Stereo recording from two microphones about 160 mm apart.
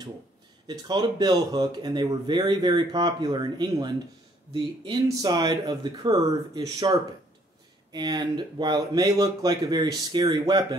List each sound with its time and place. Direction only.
0.7 s speech: 25° right (ahead or behind)